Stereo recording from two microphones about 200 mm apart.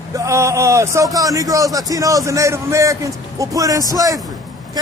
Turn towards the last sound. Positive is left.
turn(degrees=-15)  # may be behind; listen again after turning